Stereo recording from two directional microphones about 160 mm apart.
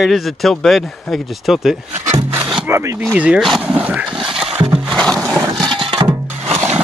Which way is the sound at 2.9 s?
5° right (ahead or behind).